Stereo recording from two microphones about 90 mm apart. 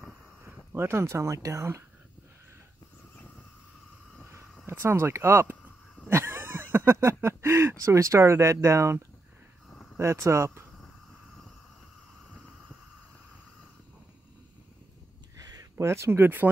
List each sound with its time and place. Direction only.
0.7 s speech: 25° right (ahead or behind)
4.6 s speech: 30° right (ahead or behind)
6.0 s a sound: 25° right (ahead or behind)
10.2 s speech: 30° right (ahead or behind)
15.3 s a sound: 40° right (ahead or behind)
15.9 s speech: 30° right (ahead or behind)